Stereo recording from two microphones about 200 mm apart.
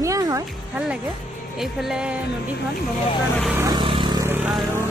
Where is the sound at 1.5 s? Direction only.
Centre (ahead or behind).